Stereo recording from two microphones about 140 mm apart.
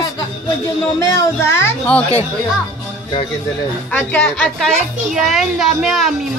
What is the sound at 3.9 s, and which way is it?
A woman's voice, 10° left (ahead or behind).